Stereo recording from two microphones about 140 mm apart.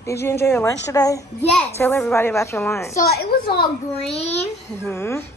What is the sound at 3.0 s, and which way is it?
Speech, 90° left.